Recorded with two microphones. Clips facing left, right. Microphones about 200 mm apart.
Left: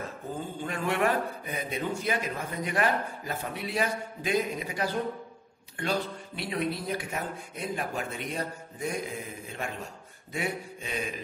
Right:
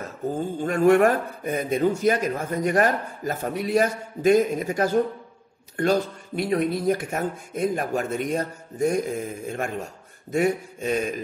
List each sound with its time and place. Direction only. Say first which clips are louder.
0.6 s a man's voice: right 12 dB; 45° right (ahead or behind)